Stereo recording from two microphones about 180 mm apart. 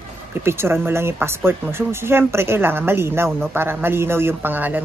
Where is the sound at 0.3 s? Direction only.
15° right (ahead or behind).